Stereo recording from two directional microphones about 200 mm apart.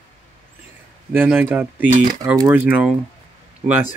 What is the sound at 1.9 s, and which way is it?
Speech, 40° right (ahead or behind).